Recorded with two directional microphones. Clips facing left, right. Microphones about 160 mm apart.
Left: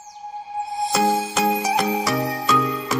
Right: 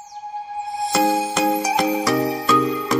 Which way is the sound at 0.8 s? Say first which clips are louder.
Right 2 dB; centre (ahead or behind).